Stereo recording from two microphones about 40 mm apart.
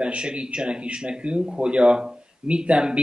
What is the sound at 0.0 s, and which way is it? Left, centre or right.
Speech, right.